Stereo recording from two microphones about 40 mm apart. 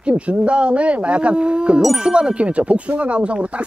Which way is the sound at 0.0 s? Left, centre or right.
Right.